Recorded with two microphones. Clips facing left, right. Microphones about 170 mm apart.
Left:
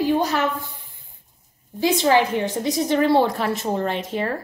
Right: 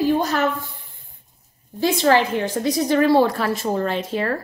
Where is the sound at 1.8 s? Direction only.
15° left (ahead or behind).